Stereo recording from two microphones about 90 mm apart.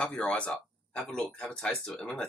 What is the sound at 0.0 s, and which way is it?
Speech, 10° left (ahead or behind).